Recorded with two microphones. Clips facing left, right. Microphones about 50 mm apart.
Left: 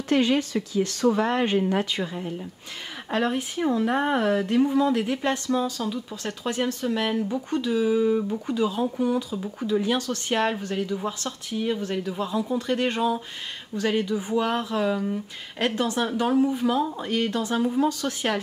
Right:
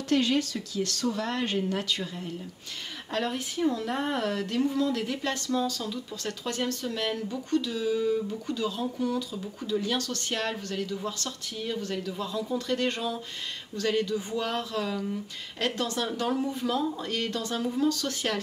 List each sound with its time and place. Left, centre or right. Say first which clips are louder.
0.1 s speech: left 4 dB; left